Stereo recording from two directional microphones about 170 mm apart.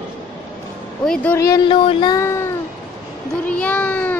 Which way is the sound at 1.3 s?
20° left (ahead or behind).